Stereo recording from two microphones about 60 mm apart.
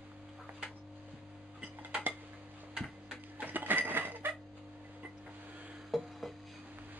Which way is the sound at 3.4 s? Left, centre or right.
Right.